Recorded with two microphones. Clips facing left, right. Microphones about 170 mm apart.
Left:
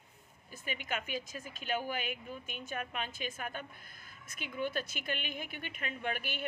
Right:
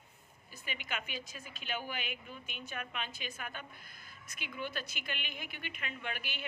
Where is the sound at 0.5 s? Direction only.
45° left (ahead or behind).